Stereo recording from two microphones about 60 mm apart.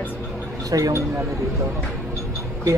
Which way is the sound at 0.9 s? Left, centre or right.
Right.